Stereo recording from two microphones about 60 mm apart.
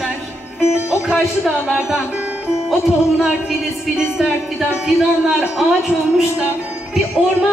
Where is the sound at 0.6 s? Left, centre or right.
Left.